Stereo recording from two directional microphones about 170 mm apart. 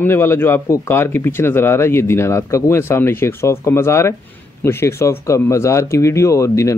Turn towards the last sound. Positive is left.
turn(degrees=15)  # may be behind; listen again after turning